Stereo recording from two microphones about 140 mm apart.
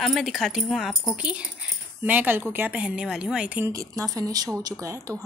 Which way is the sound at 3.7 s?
25° right (ahead or behind).